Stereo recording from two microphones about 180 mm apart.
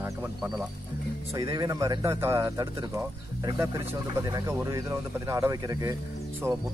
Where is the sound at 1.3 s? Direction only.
20° right (ahead or behind).